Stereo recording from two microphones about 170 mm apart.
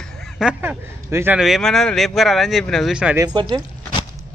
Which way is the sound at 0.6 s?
15° right (ahead or behind).